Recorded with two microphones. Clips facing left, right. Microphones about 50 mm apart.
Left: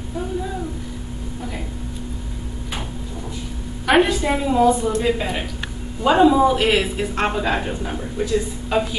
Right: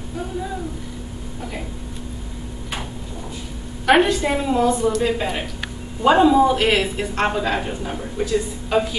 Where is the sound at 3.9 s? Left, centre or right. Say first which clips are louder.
Right 1 dB; centre.